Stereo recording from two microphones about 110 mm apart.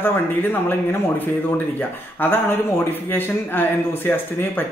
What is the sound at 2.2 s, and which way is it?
Speech, 20° left (ahead or behind).